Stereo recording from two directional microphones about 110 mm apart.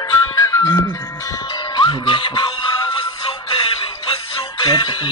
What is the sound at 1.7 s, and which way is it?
Music, 45° left (ahead or behind).